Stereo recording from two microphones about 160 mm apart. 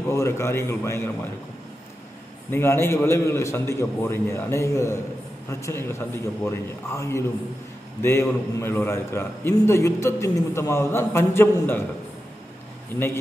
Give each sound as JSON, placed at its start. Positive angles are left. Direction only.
{"t": 0.1, "sound": "a man's voice", "side_deg": 15}
{"t": 2.5, "sound": "a man's voice", "side_deg": 15}